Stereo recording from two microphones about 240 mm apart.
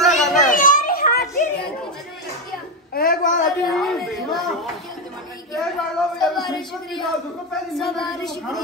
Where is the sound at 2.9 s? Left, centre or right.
Left.